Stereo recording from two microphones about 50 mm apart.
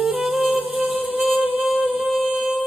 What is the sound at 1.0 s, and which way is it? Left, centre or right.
Music, right.